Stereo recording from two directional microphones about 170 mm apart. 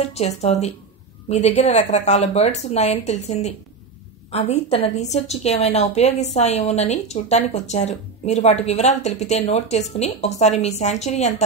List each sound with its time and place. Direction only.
0.0 s speech: 40° left (ahead or behind)